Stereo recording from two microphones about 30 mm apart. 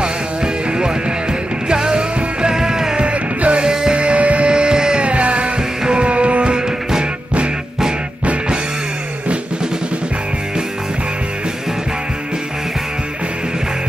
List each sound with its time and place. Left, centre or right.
1.7 s music: right
3.0 s music: right
3.6 s music: right
3.9 s music: right
4.5 s music: right
5.0 s music: right